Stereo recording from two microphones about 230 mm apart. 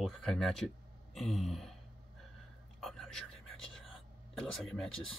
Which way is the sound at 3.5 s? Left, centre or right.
Left.